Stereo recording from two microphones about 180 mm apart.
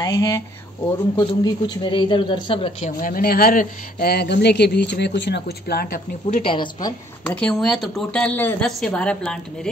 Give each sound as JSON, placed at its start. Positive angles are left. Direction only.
{"t": 0.0, "sound": "speech", "side_deg": 20}
{"t": 3.0, "sound": "speech", "side_deg": 50}
{"t": 6.2, "sound": "speech", "side_deg": 35}
{"t": 7.2, "sound": "speech", "side_deg": 5}